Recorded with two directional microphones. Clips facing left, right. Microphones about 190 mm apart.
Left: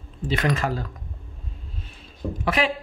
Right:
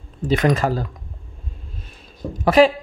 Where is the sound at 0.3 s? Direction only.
40° right (ahead or behind).